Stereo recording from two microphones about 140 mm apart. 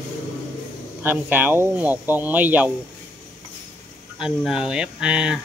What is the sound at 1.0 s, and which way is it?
Speech, 15° right (ahead or behind).